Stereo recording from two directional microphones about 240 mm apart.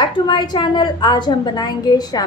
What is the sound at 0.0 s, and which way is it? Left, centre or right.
A woman's voice, centre.